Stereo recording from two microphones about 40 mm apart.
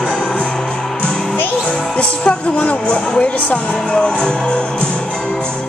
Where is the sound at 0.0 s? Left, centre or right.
Left.